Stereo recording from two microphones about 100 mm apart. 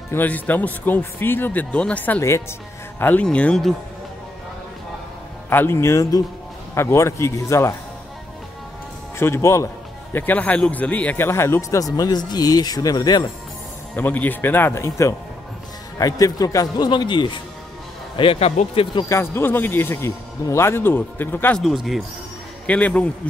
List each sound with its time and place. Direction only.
0.1 s speech: 15° left (ahead or behind)
5.5 s speech: 20° left (ahead or behind)
9.2 s speech: 30° left (ahead or behind)
10.1 s speech: 15° left (ahead or behind); by 13.3 s 40° left (ahead or behind)
13.9 s a man's voice: 15° left (ahead or behind); by 17.4 s 50° left (ahead or behind)
18.1 s speech: 65° left (ahead or behind)
19.0 s speech: 25° left (ahead or behind)
21.5 s speech: centre (ahead or behind)
22.7 s speech: 15° left (ahead or behind)